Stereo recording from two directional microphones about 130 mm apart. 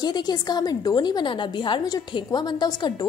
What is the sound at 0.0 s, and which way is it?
A woman's voice, 30° left (ahead or behind).